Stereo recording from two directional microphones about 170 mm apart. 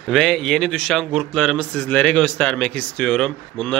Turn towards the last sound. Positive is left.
turn(degrees=5)  # may be behind; listen again after turning